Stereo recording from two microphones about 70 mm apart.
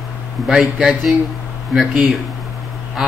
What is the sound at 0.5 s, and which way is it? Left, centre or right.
Speech, centre.